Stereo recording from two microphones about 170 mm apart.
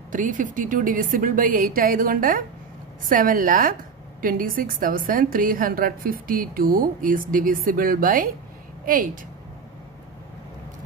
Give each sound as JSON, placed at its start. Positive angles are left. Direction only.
{"t": 0.1, "sound": "a woman's voice", "side_deg": -50}